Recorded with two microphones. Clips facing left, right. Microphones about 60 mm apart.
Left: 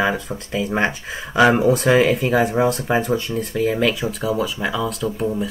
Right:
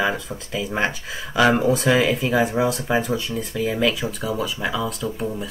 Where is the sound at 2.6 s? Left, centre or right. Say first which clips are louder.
Left 3 dB; centre.